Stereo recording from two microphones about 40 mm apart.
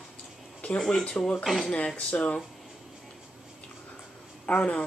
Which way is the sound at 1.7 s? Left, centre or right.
Left.